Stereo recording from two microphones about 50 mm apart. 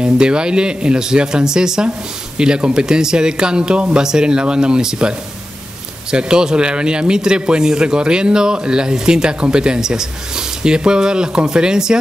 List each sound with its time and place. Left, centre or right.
0.0 s speech: centre